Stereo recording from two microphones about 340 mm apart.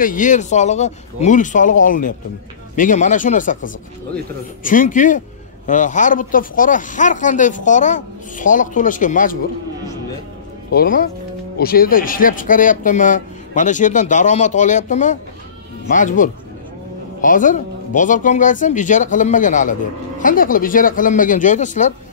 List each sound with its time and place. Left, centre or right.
0.0 s speech: left
10.7 s speech: left